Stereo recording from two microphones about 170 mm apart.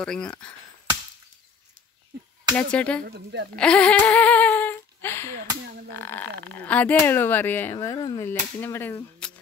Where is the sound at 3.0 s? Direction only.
70° right (ahead or behind).